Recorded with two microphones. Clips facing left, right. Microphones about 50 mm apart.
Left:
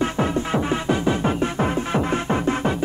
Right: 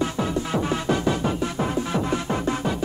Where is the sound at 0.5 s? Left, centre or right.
Centre.